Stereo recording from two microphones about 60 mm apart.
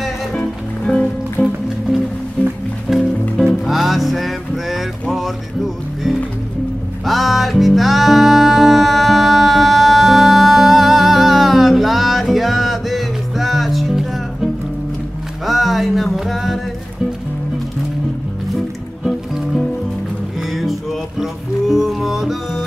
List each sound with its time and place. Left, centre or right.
0.4 s music: centre
2.9 s music: centre
7.1 s music: centre
19.0 s music: centre